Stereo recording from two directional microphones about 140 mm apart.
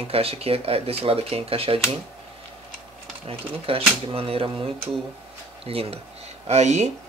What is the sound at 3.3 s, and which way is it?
Speech, 40° right (ahead or behind).